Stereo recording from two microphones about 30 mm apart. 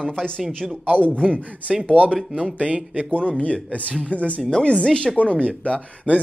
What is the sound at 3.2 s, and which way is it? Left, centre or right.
Speech, left.